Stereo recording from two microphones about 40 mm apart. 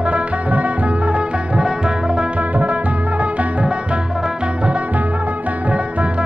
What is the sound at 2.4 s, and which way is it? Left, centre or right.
Music, right.